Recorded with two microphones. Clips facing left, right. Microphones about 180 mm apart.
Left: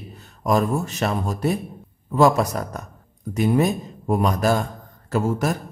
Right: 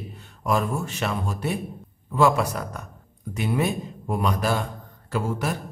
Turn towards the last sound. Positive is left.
turn(degrees=45)  # may be behind; listen again after turning